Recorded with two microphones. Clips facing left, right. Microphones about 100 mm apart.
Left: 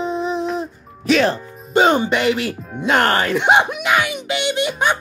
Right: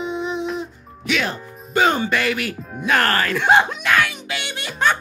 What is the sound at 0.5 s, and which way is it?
Music, 35° left (ahead or behind).